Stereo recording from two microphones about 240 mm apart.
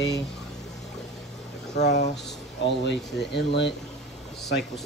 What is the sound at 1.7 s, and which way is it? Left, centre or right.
Speech, left.